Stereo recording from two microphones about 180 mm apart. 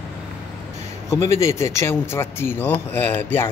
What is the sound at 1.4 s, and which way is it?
Speech, 15° left (ahead or behind).